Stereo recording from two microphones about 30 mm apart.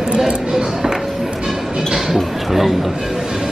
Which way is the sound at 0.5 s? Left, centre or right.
Centre.